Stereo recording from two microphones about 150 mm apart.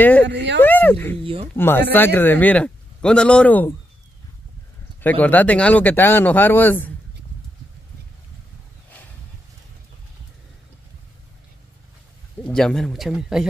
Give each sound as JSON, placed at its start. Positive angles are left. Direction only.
{"t": 0.0, "sound": "speech", "side_deg": 10}
{"t": 1.2, "sound": "speech", "side_deg": -35}
{"t": 1.5, "sound": "a man's voice", "side_deg": 15}
{"t": 5.0, "sound": "a man's voice", "side_deg": 10}
{"t": 12.4, "sound": "speech", "side_deg": 5}